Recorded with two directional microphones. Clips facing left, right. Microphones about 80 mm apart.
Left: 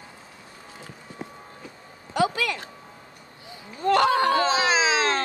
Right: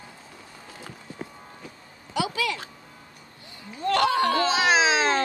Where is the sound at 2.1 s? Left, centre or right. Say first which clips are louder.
Left 3 dB; left.